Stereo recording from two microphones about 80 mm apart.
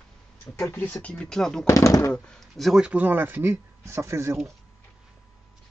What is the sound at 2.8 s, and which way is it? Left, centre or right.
Speech, centre.